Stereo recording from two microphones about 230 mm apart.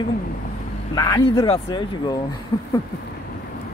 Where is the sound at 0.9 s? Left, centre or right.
Centre.